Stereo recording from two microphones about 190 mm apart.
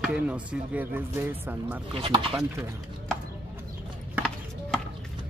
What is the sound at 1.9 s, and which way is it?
Speech, 30° right (ahead or behind).